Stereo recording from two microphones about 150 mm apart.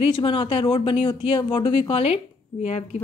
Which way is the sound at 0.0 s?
40° left (ahead or behind).